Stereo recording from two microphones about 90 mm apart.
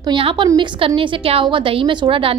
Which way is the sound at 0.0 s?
75° right (ahead or behind).